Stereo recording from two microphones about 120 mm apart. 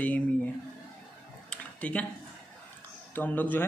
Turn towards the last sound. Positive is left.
turn(degrees=15)  # may be behind; listen again after turning